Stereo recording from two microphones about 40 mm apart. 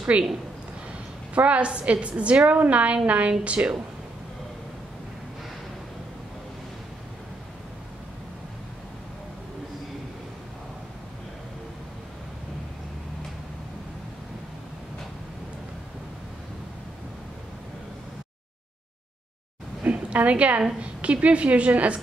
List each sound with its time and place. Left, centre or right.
0.1 s a woman's voice: right
1.3 s a woman's voice: right
19.8 s a sound: right
20.8 s a woman's voice: right